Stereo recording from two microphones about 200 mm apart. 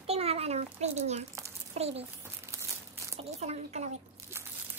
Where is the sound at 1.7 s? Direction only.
30° right (ahead or behind).